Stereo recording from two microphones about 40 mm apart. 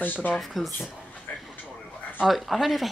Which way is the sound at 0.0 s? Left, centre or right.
Left.